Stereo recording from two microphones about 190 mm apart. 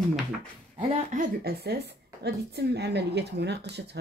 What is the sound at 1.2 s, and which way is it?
A woman's voice, 55° right (ahead or behind).